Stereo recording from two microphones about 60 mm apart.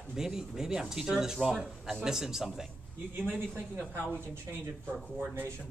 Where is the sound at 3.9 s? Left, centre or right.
Right.